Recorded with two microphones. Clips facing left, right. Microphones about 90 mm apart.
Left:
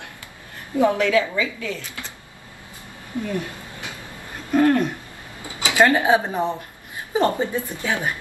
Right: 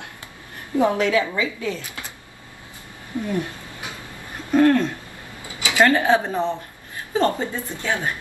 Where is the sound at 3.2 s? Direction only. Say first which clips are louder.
Right 3 dB; 20° right (ahead or behind).